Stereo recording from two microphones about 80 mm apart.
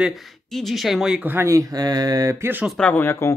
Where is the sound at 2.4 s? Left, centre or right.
Right.